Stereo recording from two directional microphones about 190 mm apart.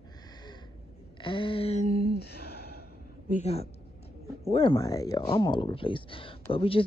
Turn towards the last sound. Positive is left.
turn(degrees=30)  # may be behind; listen again after turning